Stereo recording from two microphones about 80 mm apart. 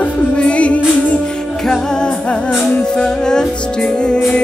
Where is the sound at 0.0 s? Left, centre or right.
Centre.